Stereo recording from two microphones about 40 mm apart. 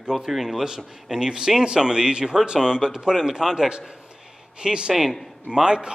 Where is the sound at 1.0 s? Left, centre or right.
Centre.